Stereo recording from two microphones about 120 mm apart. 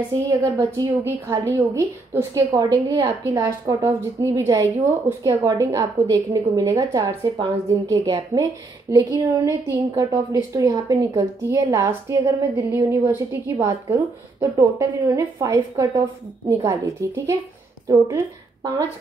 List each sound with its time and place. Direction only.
0.7 s a woman's voice: 25° right (ahead or behind)